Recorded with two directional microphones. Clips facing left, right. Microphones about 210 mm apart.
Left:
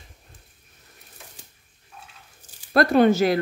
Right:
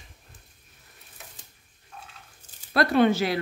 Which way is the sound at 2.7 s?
45° left (ahead or behind).